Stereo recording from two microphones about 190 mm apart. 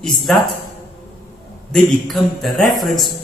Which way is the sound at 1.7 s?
Centre (ahead or behind).